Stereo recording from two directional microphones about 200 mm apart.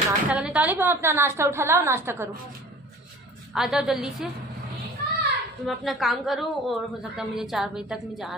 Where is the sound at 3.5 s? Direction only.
Centre (ahead or behind).